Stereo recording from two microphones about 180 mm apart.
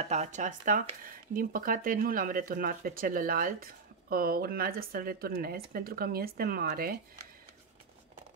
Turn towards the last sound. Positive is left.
turn(degrees=-55)  # may be behind; listen again after turning